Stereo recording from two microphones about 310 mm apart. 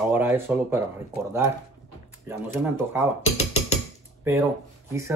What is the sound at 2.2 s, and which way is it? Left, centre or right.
Speech, centre.